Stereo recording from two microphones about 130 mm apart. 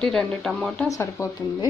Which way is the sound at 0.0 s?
5° left (ahead or behind).